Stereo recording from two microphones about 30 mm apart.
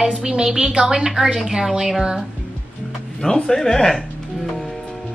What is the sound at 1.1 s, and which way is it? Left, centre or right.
Speech, centre.